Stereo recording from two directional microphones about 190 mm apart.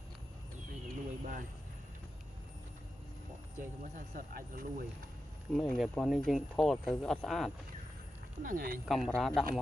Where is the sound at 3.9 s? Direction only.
50° right (ahead or behind).